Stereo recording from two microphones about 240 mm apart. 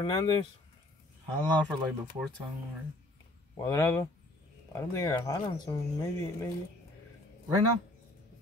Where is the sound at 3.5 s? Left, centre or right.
Centre.